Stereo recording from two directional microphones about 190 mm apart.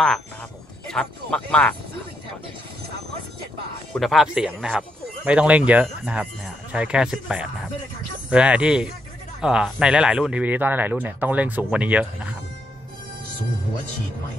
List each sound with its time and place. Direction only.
0.8 s speech: 5° left (ahead or behind)
3.9 s speech: centre (ahead or behind)